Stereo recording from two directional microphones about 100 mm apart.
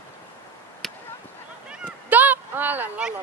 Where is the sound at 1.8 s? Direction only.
15° right (ahead or behind).